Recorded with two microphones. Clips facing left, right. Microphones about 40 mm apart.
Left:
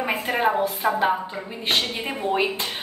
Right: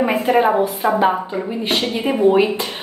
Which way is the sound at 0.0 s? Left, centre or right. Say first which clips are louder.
Right 8 dB; centre.